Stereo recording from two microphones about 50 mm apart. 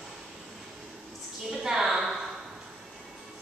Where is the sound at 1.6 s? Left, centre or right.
Centre.